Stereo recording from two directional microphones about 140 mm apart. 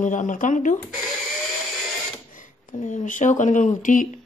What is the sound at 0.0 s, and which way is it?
Speech, 65° left (ahead or behind).